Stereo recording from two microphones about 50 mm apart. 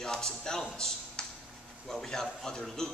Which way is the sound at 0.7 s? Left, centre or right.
Centre.